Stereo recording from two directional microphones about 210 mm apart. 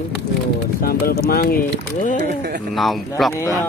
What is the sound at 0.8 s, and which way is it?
Speech, 45° left (ahead or behind).